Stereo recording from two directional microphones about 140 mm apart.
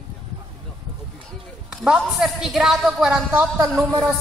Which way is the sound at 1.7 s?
5° right (ahead or behind).